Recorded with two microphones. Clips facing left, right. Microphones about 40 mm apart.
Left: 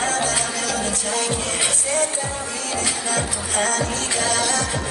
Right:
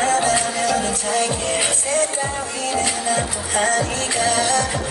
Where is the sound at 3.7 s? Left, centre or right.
Centre.